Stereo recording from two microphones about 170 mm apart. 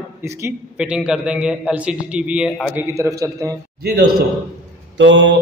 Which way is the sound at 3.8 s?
70° right (ahead or behind).